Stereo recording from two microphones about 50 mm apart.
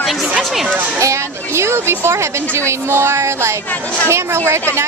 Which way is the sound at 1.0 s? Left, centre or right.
Right.